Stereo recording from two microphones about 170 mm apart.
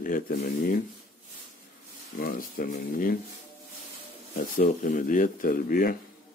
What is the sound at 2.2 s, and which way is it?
Speech, 55° left (ahead or behind).